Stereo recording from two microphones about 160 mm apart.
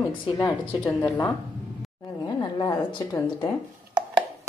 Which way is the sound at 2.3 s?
25° left (ahead or behind).